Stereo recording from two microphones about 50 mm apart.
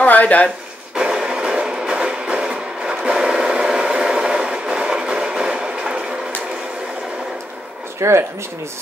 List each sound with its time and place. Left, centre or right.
0.0 s a sound: left
0.9 s music: centre
8.0 s speech: right